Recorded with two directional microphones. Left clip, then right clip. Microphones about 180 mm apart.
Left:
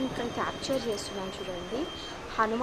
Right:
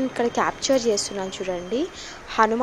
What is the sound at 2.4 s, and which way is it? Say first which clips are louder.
Speech: right 9 dB; 40° right (ahead or behind).